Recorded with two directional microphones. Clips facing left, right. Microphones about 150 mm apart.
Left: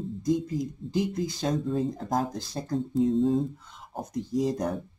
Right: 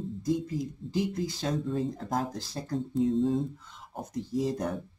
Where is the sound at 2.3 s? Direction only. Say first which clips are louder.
Left 3 dB; 20° left (ahead or behind).